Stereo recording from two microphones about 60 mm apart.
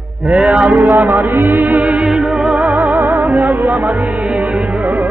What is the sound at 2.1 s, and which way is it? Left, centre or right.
Music, centre.